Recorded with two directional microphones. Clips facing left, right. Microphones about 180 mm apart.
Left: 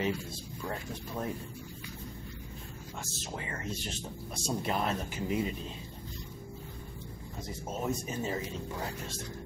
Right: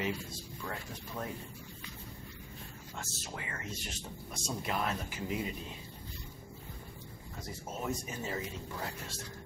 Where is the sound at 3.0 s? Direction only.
25° left (ahead or behind).